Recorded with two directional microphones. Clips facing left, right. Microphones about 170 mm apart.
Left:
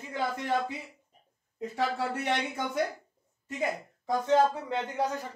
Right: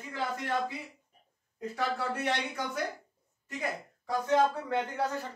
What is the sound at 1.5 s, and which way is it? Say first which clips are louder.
Speech: left 2 dB; 20° left (ahead or behind).